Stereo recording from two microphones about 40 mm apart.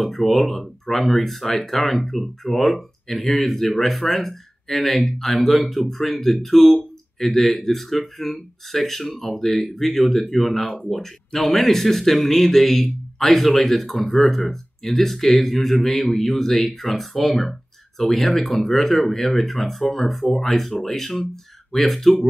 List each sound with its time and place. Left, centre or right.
0.0 s speech: centre